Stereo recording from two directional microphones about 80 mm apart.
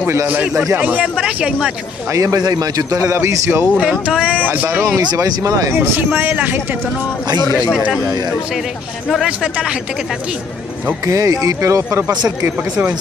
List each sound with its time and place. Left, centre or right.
0.0 s speech: right
0.3 s speech: centre
2.1 s a man's voice: right
4.1 s speech: centre
4.6 s speech: right
5.1 s a man's voice: right
6.3 s speech: right
9.2 s speech: centre
11.1 s a man's voice: right